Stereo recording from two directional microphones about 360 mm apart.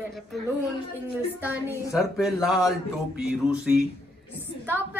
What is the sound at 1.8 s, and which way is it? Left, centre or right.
Speech, centre.